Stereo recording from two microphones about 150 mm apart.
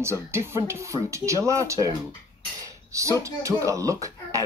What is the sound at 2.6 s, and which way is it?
Dishes, 20° right (ahead or behind).